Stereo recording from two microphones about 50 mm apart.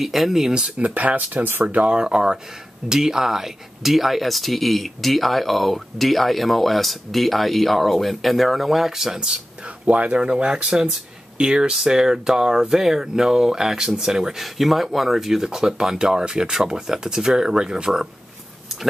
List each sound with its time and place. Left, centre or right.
0.0 s speech: centre; by 1.8 s right
1.8 s speech: centre
9.8 s speech: right